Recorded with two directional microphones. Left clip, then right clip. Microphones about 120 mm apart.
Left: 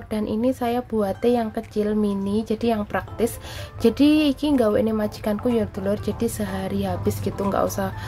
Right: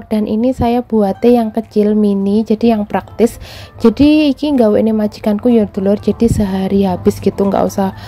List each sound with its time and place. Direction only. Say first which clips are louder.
0.1 s a woman's voice: right 8 dB; 45° right (ahead or behind)